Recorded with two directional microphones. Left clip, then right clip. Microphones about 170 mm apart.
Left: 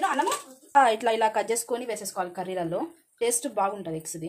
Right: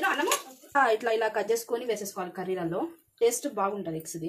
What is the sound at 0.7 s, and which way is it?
A woman's voice, 40° left (ahead or behind).